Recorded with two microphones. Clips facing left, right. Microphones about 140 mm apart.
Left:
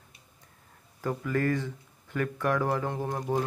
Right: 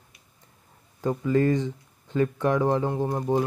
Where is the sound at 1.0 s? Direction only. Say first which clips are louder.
Right 6 dB; 20° right (ahead or behind).